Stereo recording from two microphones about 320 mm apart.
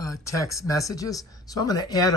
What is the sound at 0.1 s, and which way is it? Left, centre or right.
Speech, centre.